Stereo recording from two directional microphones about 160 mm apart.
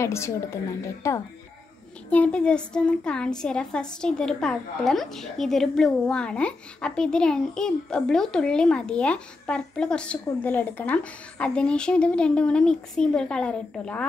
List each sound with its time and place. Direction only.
0.0 s a woman's voice: 15° left (ahead or behind)